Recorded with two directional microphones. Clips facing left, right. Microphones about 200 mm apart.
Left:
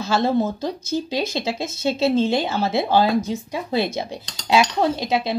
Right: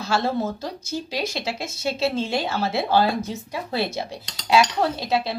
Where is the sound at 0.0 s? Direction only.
20° left (ahead or behind).